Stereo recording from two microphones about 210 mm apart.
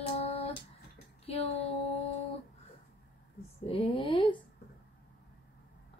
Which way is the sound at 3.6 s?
25° left (ahead or behind).